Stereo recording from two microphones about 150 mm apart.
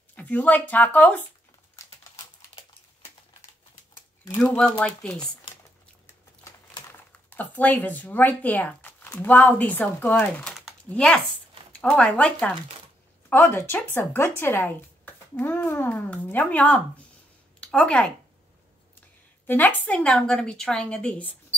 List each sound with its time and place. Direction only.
0.1 s speech: 10° left (ahead or behind)
4.4 s speech: 5° left (ahead or behind)
7.1 s speech: 10° left (ahead or behind)
10.2 s typing: centre (ahead or behind)
10.9 s speech: 5° left (ahead or behind)
19.4 s speech: 10° left (ahead or behind)